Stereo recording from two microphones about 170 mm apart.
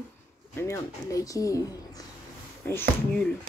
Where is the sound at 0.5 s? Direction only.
15° left (ahead or behind).